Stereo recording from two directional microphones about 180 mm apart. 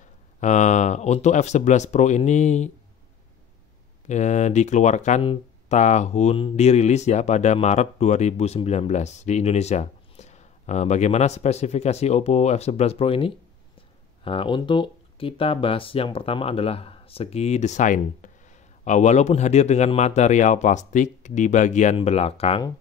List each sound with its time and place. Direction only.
0.4 s speech: 40° left (ahead or behind)
4.1 s speech: 40° left (ahead or behind)